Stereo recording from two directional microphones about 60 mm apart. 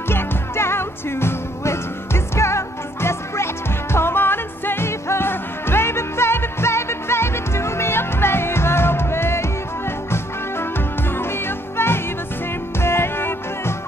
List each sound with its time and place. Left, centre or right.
0.1 s music: left